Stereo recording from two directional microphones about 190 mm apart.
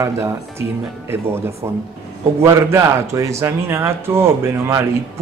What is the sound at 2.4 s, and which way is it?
Speech, 15° right (ahead or behind).